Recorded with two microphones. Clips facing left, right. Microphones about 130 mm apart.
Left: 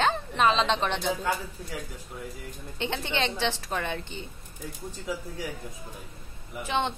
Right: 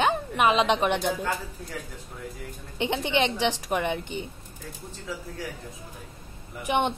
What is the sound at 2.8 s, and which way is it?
A woman's voice, 15° right (ahead or behind).